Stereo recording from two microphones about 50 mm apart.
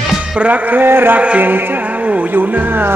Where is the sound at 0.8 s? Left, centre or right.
Right.